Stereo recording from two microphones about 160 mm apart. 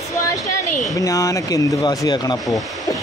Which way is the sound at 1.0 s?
20° left (ahead or behind).